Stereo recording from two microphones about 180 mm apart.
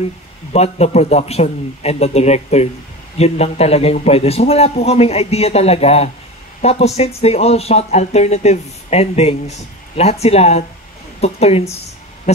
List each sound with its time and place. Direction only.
0.5 s speech: 35° left (ahead or behind)